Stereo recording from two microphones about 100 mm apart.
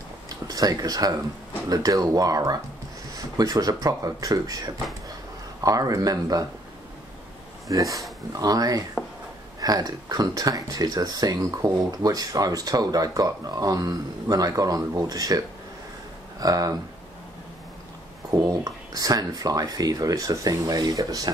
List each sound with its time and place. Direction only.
0.3 s speech: 35° right (ahead or behind)
7.6 s speech: 35° right (ahead or behind)
18.3 s speech: 40° right (ahead or behind)